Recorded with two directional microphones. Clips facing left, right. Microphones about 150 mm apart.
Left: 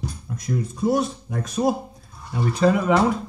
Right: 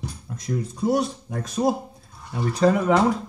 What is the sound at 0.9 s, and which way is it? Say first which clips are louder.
Speech: left 1 dB; 35° right (ahead or behind).